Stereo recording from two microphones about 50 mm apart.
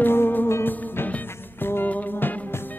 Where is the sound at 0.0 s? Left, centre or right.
Left.